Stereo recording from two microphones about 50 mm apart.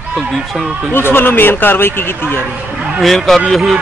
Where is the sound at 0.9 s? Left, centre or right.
Left.